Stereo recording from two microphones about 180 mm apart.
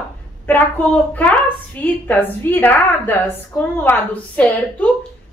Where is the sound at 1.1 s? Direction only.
10° left (ahead or behind).